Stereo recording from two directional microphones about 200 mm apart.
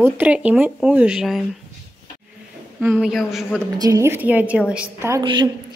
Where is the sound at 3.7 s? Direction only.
15° right (ahead or behind).